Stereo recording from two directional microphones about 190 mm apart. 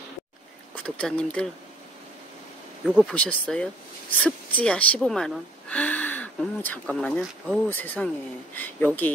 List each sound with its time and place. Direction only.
0.7 s speech: 5° left (ahead or behind)
2.9 s a woman's voice: centre (ahead or behind)